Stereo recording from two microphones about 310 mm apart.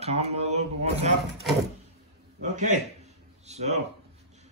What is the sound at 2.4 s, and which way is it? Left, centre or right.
Speech, right.